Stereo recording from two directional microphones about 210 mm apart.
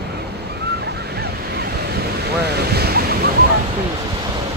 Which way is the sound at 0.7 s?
50° right (ahead or behind).